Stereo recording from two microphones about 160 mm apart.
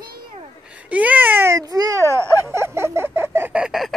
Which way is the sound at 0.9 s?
10° right (ahead or behind).